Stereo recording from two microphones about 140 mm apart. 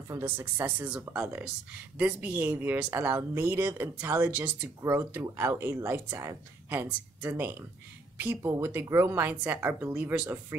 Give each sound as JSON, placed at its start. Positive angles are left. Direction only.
{"t": 0.1, "sound": "speech", "side_deg": -15}